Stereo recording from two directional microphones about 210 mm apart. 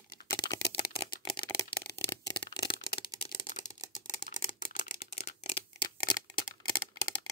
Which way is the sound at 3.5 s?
35° left (ahead or behind).